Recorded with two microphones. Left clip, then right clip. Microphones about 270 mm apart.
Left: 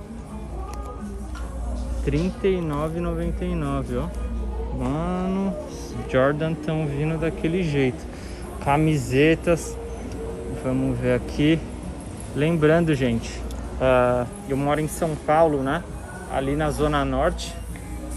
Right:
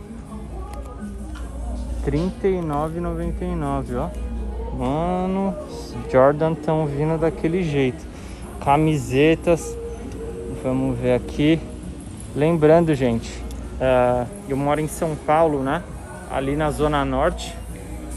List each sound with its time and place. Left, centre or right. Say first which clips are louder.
2.0 s speech: right 1 dB; centre
7.1 s a man's voice: right 6 dB; right
7.4 s speech: right 2 dB; centre